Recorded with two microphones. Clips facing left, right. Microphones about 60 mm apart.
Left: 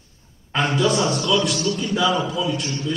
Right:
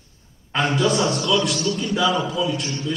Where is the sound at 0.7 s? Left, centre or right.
Centre.